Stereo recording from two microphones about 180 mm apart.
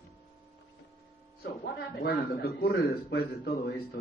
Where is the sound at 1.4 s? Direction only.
60° left (ahead or behind).